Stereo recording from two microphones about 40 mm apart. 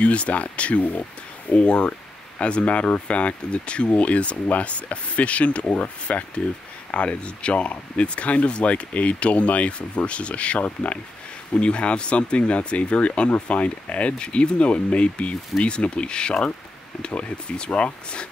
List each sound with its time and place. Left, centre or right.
0.0 s speech: left